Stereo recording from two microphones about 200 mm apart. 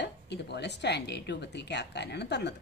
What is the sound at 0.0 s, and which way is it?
Speech, 60° left (ahead or behind).